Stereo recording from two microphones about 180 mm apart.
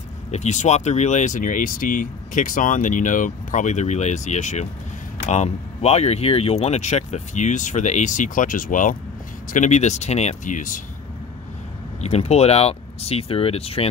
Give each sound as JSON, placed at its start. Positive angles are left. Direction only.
{"t": 0.3, "sound": "speech", "side_deg": 40}
{"t": 12.0, "sound": "speech", "side_deg": 35}